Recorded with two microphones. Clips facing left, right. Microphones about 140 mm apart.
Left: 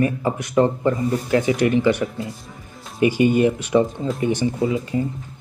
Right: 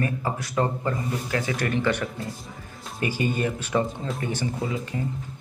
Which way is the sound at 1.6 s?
15° left (ahead or behind).